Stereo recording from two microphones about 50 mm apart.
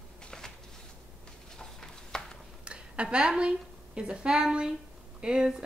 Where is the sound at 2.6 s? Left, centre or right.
Right.